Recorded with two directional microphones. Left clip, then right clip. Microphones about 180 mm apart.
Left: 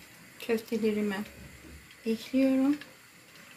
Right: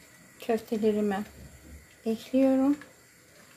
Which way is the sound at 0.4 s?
55° right (ahead or behind).